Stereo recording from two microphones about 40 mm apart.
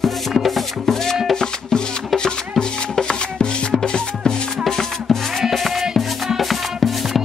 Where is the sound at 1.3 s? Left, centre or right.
Centre.